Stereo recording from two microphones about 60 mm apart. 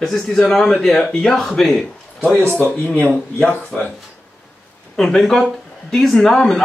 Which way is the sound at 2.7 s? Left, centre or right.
Centre.